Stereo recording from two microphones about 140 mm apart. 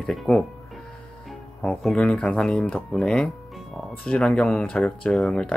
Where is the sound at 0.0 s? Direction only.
Centre (ahead or behind).